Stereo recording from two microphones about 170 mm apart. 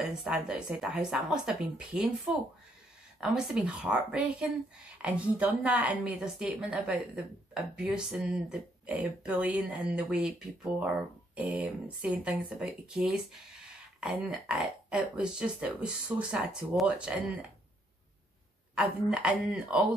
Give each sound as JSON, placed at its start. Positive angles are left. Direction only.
{"t": 0.1, "sound": "speech", "side_deg": -5}
{"t": 18.8, "sound": "speech", "side_deg": -5}